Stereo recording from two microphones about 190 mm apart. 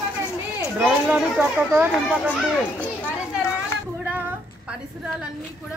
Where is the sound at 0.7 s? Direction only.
5° right (ahead or behind).